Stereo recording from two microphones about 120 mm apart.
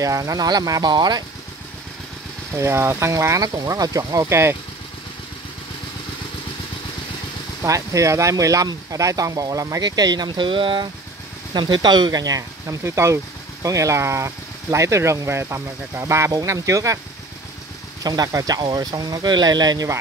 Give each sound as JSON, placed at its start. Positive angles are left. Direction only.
{"t": 0.0, "sound": "speech", "side_deg": -30}
{"t": 2.5, "sound": "speech", "side_deg": -25}
{"t": 7.6, "sound": "speech", "side_deg": -25}
{"t": 18.0, "sound": "speech", "side_deg": -30}